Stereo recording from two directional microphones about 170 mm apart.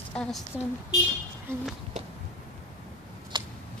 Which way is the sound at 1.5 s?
15° right (ahead or behind).